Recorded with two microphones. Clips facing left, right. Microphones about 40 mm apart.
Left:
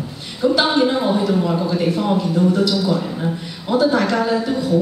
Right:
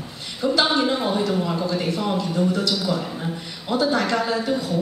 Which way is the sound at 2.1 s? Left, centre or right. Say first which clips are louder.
Left 5 dB; centre.